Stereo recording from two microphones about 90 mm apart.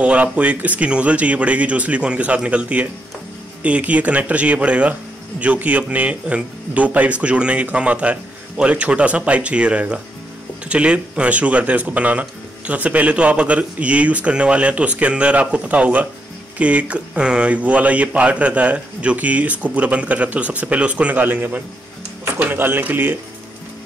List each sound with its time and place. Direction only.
0.0 s speech: 15° right (ahead or behind)